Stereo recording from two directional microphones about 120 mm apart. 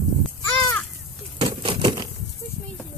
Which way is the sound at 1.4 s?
45° right (ahead or behind).